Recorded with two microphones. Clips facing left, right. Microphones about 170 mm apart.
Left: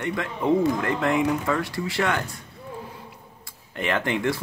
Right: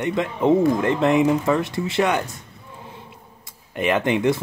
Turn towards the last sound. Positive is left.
turn(degrees=-20)  # may be behind; listen again after turning